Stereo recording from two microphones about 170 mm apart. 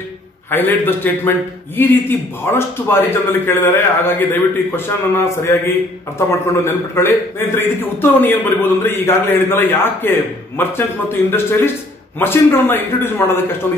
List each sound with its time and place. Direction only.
0.5 s a man's voice: 10° left (ahead or behind)
11.2 s a man's voice: 15° left (ahead or behind)